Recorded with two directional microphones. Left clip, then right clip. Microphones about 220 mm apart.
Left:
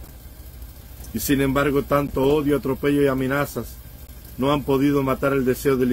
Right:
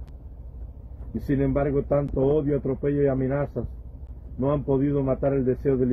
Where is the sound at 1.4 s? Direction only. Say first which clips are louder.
Left 3 dB; 15° left (ahead or behind).